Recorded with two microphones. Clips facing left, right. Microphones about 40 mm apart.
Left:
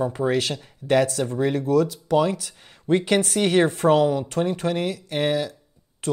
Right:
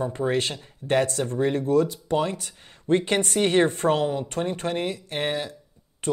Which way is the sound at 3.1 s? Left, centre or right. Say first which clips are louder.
Left 2 dB; centre.